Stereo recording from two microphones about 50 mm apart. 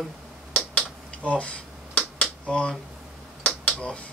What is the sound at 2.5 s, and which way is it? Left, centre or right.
Speech, left.